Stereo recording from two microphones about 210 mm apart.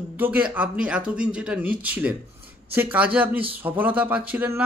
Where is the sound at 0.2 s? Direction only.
5° right (ahead or behind).